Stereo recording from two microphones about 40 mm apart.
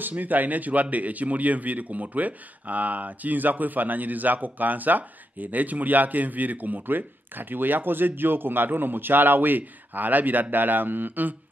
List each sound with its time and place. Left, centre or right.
0.2 s a man's voice: right